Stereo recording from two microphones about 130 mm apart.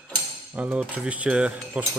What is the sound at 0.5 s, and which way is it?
Speech, 10° right (ahead or behind).